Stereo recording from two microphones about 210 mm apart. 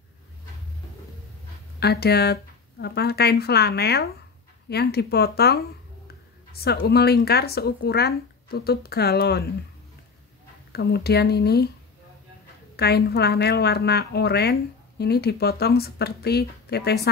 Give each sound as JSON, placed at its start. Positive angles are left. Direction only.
{"t": 1.8, "sound": "a woman's voice", "side_deg": 50}
{"t": 10.7, "sound": "a woman's voice", "side_deg": 50}
{"t": 12.7, "sound": "a woman's voice", "side_deg": 50}